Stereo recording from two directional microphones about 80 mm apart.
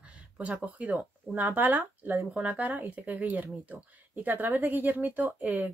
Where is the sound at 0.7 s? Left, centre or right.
Centre.